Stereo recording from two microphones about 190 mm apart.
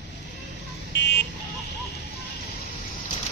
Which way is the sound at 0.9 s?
65° left (ahead or behind).